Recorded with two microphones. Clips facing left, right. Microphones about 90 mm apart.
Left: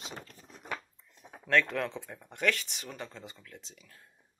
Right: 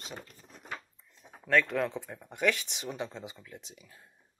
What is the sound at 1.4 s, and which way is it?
Speech, 5° right (ahead or behind).